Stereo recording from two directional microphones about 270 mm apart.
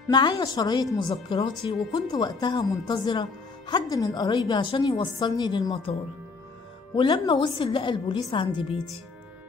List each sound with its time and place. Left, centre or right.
0.1 s a woman's voice: centre
7.0 s a woman's voice: centre